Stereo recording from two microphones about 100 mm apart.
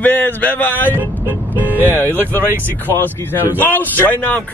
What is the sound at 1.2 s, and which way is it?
Music, 20° right (ahead or behind).